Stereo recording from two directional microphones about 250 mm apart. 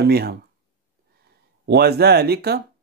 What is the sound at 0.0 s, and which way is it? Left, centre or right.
Speech, right.